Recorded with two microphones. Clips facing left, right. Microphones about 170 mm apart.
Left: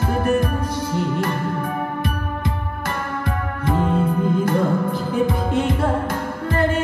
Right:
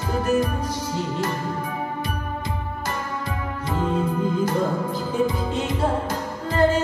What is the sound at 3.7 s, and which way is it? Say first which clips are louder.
Music: left 4 dB; 55° left (ahead or behind).